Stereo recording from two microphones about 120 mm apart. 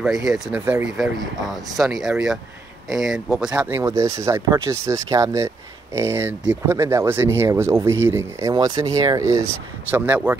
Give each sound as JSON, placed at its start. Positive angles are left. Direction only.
{"t": 0.0, "sound": "speech", "side_deg": -5}
{"t": 1.8, "sound": "speech", "side_deg": -5}
{"t": 3.8, "sound": "speech", "side_deg": -25}